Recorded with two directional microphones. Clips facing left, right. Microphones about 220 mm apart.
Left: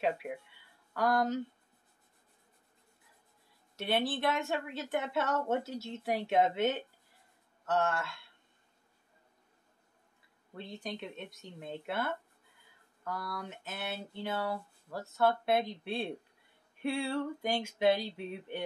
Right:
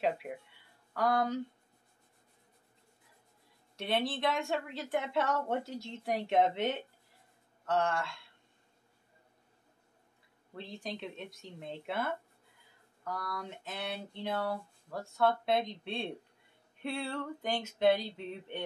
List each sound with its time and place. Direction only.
0.9 s a woman's voice: centre (ahead or behind)
3.7 s a woman's voice: centre (ahead or behind)
10.5 s a woman's voice: centre (ahead or behind)